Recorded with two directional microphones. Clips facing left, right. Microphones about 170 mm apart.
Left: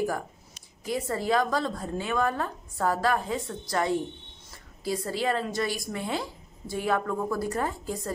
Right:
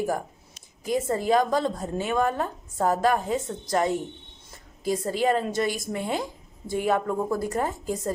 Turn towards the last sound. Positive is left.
turn(degrees=-20)  # may be behind; listen again after turning